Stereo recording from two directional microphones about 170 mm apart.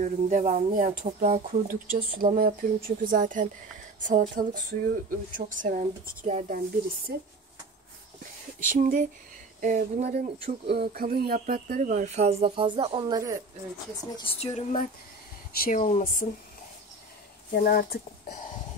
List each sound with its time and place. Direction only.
0.0 s speech: 45° right (ahead or behind)
4.2 s speech: 65° right (ahead or behind)
5.3 s speech: 50° right (ahead or behind)
7.1 s speech: 70° right (ahead or behind)
8.7 s speech: 50° right (ahead or behind)
10.1 s speech: 65° right (ahead or behind); by 13.2 s 30° right (ahead or behind)
14.1 s speech: 35° left (ahead or behind)
15.5 s speech: 55° left (ahead or behind)
17.6 s speech: 65° left (ahead or behind)